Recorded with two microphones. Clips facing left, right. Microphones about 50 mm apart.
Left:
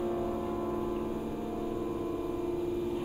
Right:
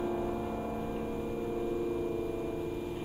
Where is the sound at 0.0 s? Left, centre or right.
Centre.